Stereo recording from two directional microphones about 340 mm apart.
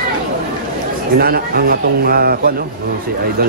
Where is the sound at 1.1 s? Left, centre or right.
Right.